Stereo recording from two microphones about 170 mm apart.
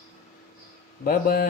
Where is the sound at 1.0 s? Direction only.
60° left (ahead or behind).